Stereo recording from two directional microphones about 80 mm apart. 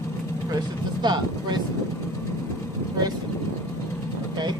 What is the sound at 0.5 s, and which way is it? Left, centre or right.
Speech, right.